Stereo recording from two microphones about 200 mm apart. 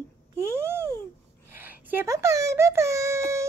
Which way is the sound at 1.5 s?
10° right (ahead or behind).